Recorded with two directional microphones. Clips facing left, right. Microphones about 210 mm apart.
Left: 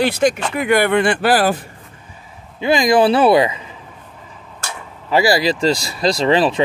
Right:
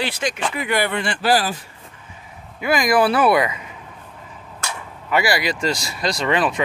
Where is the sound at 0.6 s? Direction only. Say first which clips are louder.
Left 8 dB; 50° left (ahead or behind).